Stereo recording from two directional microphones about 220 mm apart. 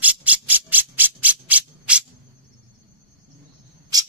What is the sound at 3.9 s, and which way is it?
Insect, 15° right (ahead or behind).